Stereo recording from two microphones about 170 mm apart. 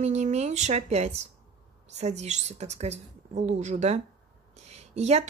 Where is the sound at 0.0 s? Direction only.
40° right (ahead or behind).